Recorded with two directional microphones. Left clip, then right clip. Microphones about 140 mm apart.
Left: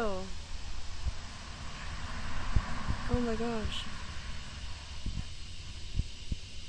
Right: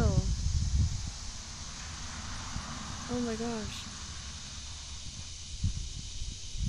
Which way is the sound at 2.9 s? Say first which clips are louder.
Left 1 dB; 25° right (ahead or behind).